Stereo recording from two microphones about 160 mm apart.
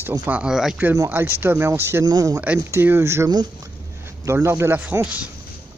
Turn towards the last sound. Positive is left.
turn(degrees=-10)  # may be behind; listen again after turning